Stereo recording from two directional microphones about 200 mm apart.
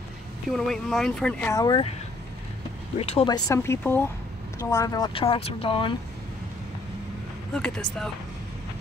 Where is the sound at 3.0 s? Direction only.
30° left (ahead or behind).